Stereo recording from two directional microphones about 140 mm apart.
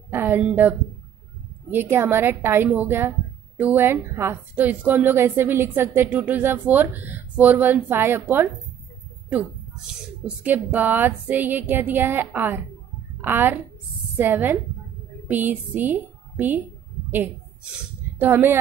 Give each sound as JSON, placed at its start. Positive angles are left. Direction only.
{"t": 0.1, "sound": "a woman's voice", "side_deg": -15}
{"t": 10.2, "sound": "a woman's voice", "side_deg": -10}
{"t": 18.2, "sound": "a woman's voice", "side_deg": -15}